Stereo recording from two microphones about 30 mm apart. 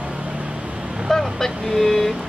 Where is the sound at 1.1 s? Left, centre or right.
Centre.